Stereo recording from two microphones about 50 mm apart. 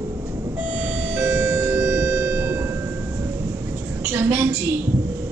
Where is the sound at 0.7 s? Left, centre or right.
Right.